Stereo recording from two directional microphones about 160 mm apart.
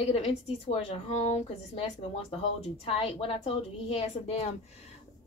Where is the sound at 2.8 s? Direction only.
35° left (ahead or behind).